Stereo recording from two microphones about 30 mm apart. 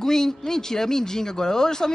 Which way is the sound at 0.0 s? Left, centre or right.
Centre.